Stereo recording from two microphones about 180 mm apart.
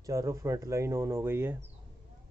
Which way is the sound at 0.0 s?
15° right (ahead or behind).